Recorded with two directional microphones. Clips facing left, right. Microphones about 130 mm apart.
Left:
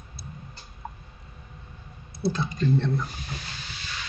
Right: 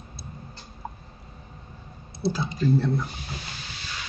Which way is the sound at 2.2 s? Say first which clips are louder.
Even; 25° right (ahead or behind).